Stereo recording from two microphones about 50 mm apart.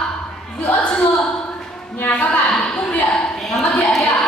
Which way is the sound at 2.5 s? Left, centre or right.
Centre.